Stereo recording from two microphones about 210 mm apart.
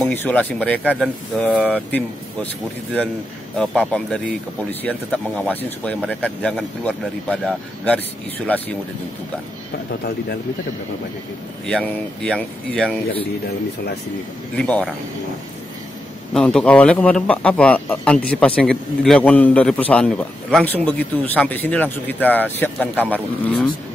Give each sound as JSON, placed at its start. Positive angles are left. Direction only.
{"t": 0.0, "sound": "speech", "side_deg": 10}
{"t": 10.0, "sound": "speech", "side_deg": 50}
{"t": 11.6, "sound": "speech", "side_deg": 5}
{"t": 14.6, "sound": "speech", "side_deg": 5}
{"t": 16.3, "sound": "speech", "side_deg": 5}